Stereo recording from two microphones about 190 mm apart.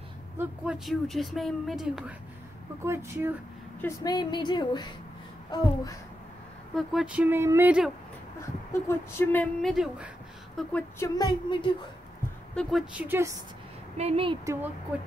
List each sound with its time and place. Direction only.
0.4 s a woman's voice: 5° right (ahead or behind)
2.8 s speech: 15° right (ahead or behind)
3.8 s a woman's voice: 20° left (ahead or behind)
6.7 s speech: centre (ahead or behind)
8.8 s a woman's voice: 10° left (ahead or behind)
11.1 s a woman's voice: 25° left (ahead or behind)
12.5 s speech: 5° right (ahead or behind)
13.9 s speech: 30° right (ahead or behind)
14.4 s speech: 15° right (ahead or behind)